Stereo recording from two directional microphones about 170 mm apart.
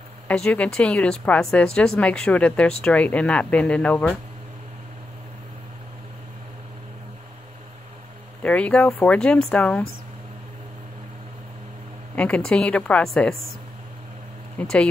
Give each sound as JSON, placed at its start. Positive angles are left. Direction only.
{"t": 0.3, "sound": "speech", "side_deg": 5}
{"t": 8.4, "sound": "speech", "side_deg": 10}
{"t": 12.2, "sound": "speech", "side_deg": 5}
{"t": 14.6, "sound": "speech", "side_deg": 5}